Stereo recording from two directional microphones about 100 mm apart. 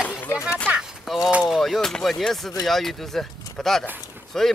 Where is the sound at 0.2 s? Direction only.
25° left (ahead or behind).